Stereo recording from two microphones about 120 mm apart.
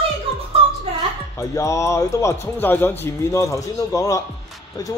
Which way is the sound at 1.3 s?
25° left (ahead or behind).